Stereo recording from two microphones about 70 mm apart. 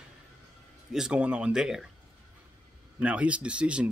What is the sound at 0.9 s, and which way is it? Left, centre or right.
Speech, centre.